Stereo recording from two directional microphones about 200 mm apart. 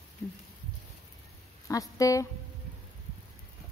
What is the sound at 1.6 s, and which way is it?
Speech, 15° left (ahead or behind).